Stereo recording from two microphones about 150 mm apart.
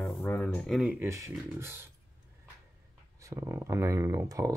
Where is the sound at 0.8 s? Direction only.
15° right (ahead or behind).